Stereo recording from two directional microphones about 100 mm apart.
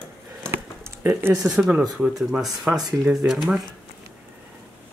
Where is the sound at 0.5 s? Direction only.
25° right (ahead or behind).